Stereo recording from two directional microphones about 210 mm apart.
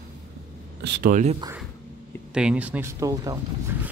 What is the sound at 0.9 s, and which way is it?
Speech, 45° right (ahead or behind).